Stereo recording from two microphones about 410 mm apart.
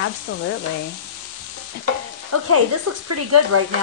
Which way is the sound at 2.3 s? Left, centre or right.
Right.